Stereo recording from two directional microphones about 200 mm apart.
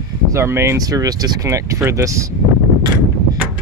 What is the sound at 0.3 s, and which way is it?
Speech, 10° right (ahead or behind).